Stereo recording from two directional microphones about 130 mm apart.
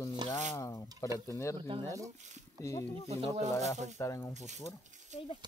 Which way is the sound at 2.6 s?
25° left (ahead or behind).